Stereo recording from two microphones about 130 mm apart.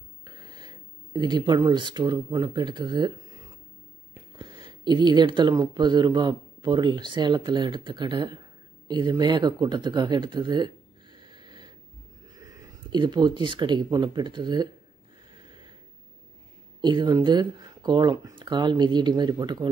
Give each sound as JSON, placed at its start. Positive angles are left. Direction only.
{"t": 0.2, "sound": "speech", "side_deg": -30}
{"t": 4.4, "sound": "speech", "side_deg": -40}
{"t": 12.9, "sound": "speech", "side_deg": -35}
{"t": 16.8, "sound": "speech", "side_deg": -35}